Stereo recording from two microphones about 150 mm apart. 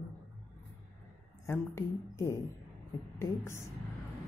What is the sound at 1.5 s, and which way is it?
Speech, 20° left (ahead or behind).